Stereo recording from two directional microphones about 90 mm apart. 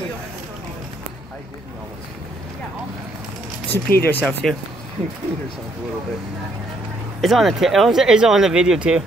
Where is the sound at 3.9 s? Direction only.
20° left (ahead or behind).